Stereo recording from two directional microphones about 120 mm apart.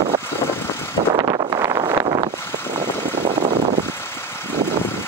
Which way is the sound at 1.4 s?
30° right (ahead or behind).